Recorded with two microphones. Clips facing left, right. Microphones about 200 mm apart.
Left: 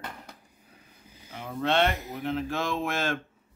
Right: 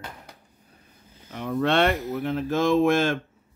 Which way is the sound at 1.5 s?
60° right (ahead or behind).